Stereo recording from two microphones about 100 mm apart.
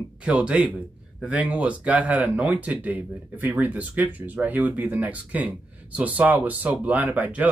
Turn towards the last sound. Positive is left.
turn(degrees=-15)  # may be behind; listen again after turning